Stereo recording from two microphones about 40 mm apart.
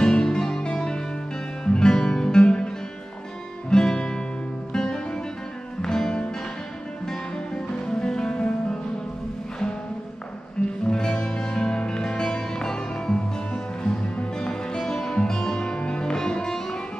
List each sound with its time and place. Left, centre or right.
0.0 s music: left
3.7 s guitar: centre
4.7 s music: centre
10.9 s music: centre